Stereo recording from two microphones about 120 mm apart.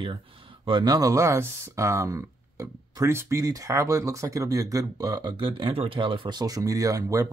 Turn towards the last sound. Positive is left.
turn(degrees=-30)  # may be behind; listen again after turning